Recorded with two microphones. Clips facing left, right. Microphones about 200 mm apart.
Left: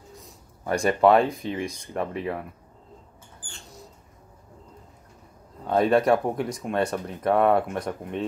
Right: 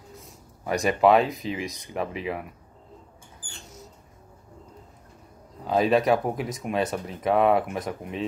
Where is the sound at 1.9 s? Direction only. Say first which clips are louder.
Left 1 dB; 5° right (ahead or behind).